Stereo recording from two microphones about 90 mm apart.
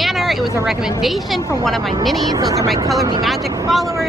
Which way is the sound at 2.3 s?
40° right (ahead or behind).